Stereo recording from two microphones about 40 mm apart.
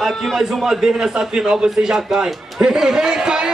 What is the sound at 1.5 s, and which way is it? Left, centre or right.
A man's voice, right.